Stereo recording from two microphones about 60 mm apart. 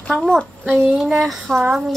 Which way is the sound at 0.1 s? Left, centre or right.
Centre.